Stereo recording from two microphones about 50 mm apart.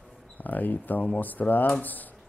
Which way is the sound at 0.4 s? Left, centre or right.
Left.